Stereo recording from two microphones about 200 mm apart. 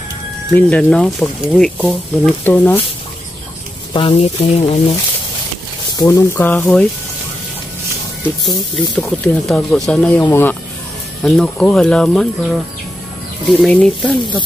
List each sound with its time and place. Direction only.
0.5 s speech: 5° left (ahead or behind)
2.4 s speech: 10° left (ahead or behind)
3.9 s speech: 30° left (ahead or behind)
5.9 s speech: 15° left (ahead or behind)
8.5 s speech: 5° left (ahead or behind)